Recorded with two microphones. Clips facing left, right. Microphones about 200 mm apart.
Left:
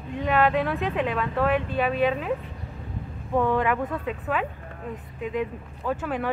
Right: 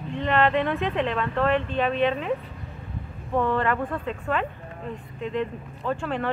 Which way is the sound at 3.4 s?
10° left (ahead or behind).